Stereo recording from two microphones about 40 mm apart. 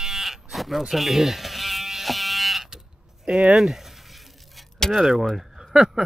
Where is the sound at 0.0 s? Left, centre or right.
Centre.